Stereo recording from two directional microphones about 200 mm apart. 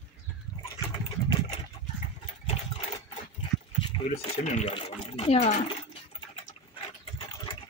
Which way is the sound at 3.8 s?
30° left (ahead or behind).